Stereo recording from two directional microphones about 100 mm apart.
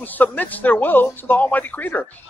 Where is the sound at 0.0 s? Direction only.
15° left (ahead or behind).